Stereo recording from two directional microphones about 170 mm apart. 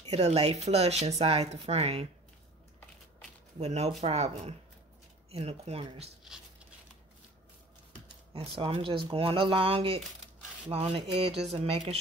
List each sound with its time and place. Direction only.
0.0 s speech: 40° right (ahead or behind)
3.5 s speech: 40° right (ahead or behind)
8.3 s speech: 30° right (ahead or behind)